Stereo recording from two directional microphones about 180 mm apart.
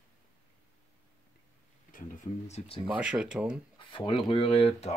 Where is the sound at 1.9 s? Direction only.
45° left (ahead or behind).